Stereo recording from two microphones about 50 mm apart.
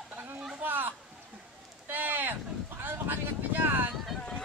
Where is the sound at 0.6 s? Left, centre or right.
Right.